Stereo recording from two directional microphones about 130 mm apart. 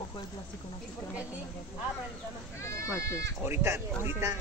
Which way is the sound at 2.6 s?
20° left (ahead or behind).